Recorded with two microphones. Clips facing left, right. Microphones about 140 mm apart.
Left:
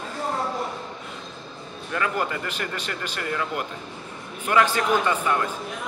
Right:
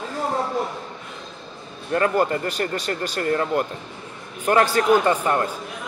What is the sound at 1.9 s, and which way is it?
Speech, 40° right (ahead or behind).